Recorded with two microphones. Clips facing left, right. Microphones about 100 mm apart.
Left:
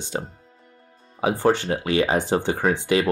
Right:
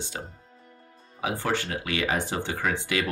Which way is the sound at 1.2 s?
30° left (ahead or behind).